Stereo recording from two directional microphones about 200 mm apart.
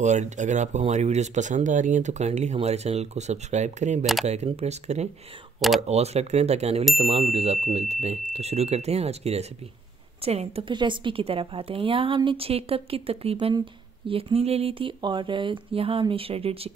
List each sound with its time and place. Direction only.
0.0 s speech: 35° right (ahead or behind)
4.0 s speech: centre (ahead or behind)
4.3 s a woman's voice: 30° right (ahead or behind)